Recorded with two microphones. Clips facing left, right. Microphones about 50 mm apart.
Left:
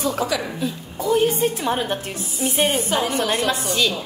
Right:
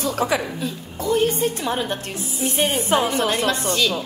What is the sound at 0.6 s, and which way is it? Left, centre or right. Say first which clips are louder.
A woman's voice: left 1 dB; centre.